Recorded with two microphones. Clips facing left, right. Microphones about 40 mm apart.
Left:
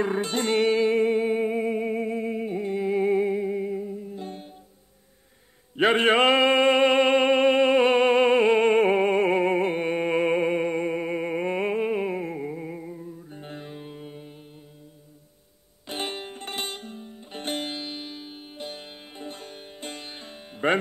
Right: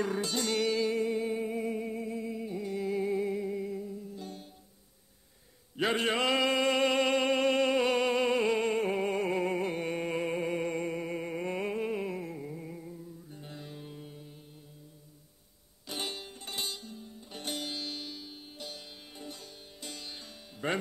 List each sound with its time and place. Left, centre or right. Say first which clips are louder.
0.0 s music: left 6 dB; left
5.8 s music: left 10 dB; left
15.9 s music: left 6 dB; left